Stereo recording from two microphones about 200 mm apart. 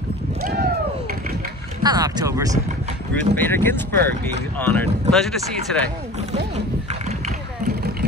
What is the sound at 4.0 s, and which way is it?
Speech, 55° right (ahead or behind).